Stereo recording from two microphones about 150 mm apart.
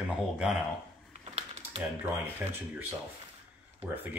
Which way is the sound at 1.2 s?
40° right (ahead or behind).